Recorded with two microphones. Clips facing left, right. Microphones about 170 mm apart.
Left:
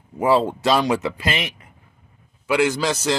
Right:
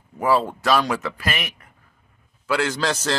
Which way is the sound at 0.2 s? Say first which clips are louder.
Left 3 dB; 25° left (ahead or behind).